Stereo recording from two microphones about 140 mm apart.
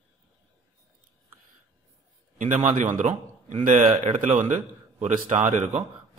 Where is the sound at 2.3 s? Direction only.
65° right (ahead or behind).